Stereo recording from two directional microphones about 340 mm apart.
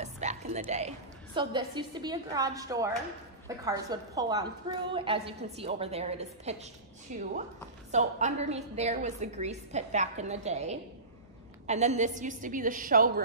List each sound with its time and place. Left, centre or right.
0.0 s a woman's voice: centre